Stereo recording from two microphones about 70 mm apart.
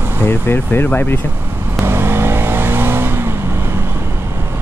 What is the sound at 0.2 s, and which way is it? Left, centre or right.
Speech, left.